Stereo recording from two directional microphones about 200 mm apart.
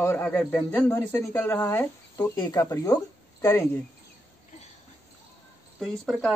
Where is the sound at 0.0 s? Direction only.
10° left (ahead or behind).